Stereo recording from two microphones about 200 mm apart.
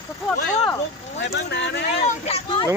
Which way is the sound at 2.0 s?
30° left (ahead or behind).